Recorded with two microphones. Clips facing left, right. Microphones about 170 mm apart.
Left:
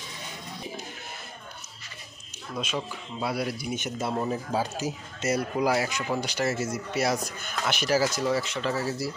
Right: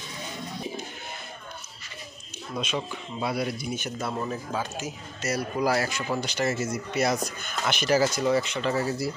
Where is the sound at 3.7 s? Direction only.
25° left (ahead or behind).